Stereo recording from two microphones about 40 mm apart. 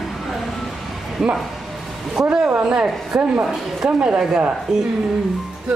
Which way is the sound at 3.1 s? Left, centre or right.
Right.